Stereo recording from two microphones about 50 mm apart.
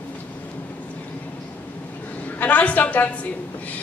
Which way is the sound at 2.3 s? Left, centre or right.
Left.